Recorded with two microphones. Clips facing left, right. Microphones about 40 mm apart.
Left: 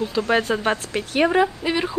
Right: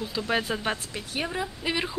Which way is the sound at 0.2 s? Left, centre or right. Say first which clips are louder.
Left 8 dB; left.